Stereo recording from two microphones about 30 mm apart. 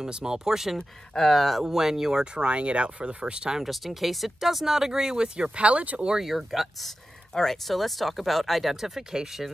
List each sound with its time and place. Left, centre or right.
0.1 s speech: right
0.5 s speech: centre
0.7 s speech: centre
1.6 s speech: centre
2.3 s speech: right
3.6 s speech: centre
4.7 s speech: centre
5.6 s speech: right
6.2 s speech: centre
7.4 s speech: centre
8.7 s speech: centre
9.1 s speech: right